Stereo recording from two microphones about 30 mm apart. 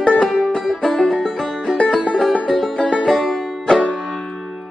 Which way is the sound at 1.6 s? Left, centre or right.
Left.